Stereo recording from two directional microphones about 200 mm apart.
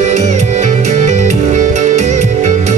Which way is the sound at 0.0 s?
35° right (ahead or behind).